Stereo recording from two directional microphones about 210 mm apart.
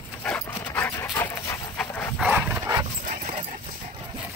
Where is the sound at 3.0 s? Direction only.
35° right (ahead or behind).